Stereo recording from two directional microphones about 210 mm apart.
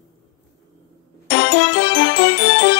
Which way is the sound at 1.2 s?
65° left (ahead or behind).